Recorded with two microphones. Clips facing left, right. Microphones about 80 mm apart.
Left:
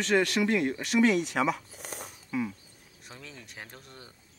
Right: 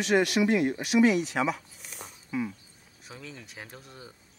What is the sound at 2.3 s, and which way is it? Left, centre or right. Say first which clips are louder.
Speech: even; centre.